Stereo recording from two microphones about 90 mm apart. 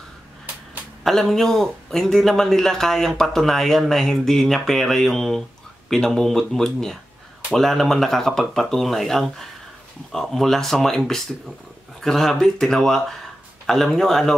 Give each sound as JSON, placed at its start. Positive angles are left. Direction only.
{"t": 1.0, "sound": "speech", "side_deg": 5}
{"t": 12.0, "sound": "speech", "side_deg": 5}